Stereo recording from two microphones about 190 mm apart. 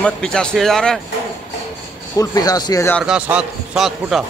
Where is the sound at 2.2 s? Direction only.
20° left (ahead or behind).